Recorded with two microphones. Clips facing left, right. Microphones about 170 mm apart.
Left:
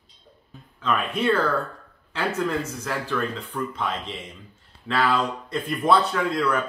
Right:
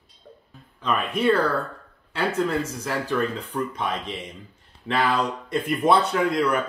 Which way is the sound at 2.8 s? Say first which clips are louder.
Right 2 dB; 15° right (ahead or behind).